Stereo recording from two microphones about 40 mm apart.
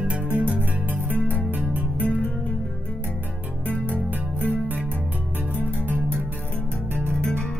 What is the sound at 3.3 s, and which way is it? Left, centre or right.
Music, right.